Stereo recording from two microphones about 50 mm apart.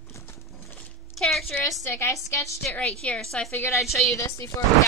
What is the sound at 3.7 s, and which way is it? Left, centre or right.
Speech, left.